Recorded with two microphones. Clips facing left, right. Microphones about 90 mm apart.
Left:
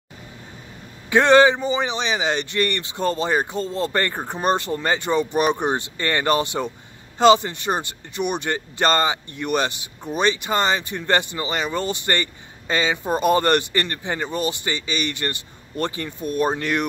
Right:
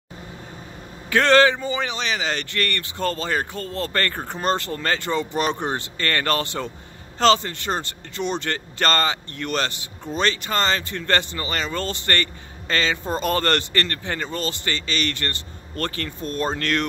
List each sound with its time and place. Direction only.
1.1 s speech: 15° left (ahead or behind)